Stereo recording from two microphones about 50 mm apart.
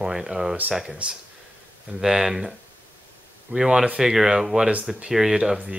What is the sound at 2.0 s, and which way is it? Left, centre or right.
Speech, centre.